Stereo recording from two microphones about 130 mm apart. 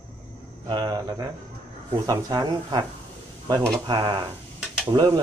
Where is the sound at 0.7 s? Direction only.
35° right (ahead or behind).